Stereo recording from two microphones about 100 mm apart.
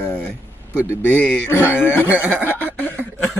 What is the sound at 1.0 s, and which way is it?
Speech, 20° left (ahead or behind).